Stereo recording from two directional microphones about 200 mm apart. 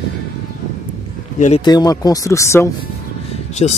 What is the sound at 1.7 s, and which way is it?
Speech, 20° left (ahead or behind).